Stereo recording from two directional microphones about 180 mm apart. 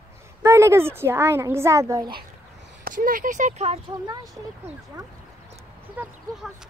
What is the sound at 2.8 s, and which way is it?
Speech, 50° right (ahead or behind).